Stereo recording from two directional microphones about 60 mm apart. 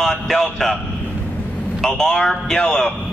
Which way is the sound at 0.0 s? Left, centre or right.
Centre.